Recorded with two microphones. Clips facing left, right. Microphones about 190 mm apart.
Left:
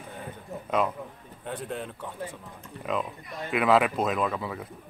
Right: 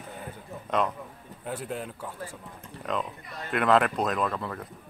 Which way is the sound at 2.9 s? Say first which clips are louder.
Left 1 dB; 5° left (ahead or behind).